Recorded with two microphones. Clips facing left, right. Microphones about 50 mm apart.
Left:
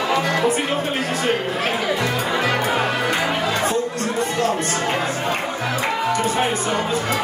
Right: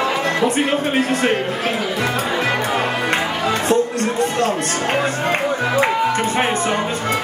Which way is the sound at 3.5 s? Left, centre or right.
Right.